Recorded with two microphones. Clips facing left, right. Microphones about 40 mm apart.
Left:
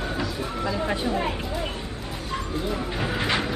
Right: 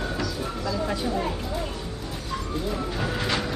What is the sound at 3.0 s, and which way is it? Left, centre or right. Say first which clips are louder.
Speech: left 3 dB; left.